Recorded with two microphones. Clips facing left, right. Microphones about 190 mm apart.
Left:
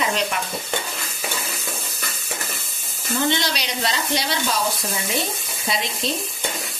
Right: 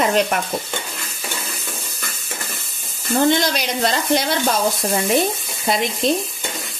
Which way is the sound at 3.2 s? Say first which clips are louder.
Right 6 dB; 50° right (ahead or behind).